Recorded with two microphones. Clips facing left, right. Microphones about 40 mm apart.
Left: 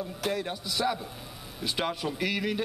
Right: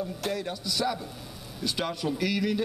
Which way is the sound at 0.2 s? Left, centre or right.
Centre.